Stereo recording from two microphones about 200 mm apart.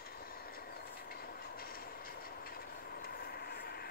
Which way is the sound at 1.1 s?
50° left (ahead or behind).